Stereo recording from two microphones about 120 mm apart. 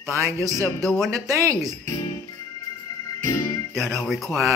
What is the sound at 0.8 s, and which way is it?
Speech, centre (ahead or behind).